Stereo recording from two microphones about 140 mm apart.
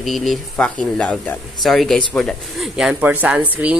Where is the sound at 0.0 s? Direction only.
Centre (ahead or behind).